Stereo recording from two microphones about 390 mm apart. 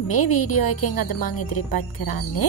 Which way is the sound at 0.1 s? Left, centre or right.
Left.